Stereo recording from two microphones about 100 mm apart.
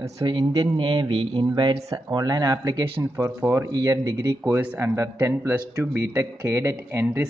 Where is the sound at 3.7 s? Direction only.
35° right (ahead or behind).